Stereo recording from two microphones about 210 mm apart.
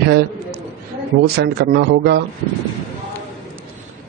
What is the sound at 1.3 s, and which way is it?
Speech, 50° right (ahead or behind).